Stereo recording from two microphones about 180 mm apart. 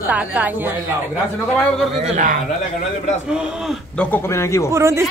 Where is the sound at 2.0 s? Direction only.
45° right (ahead or behind).